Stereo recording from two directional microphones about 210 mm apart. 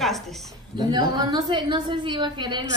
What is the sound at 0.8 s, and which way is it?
A woman's voice, 20° right (ahead or behind).